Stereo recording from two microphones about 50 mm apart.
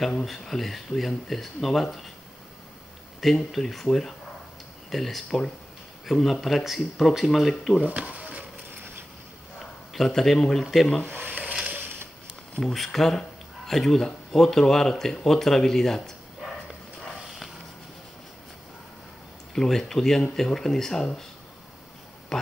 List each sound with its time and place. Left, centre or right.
0.0 s speech: centre
3.2 s speech: centre
7.9 s speech: right
9.9 s speech: centre
11.2 s stir: right
12.5 s speech: centre
19.5 s speech: centre
22.3 s a sound: centre